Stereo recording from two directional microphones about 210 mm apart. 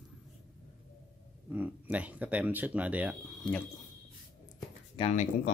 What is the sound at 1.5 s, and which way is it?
Speech, 5° right (ahead or behind).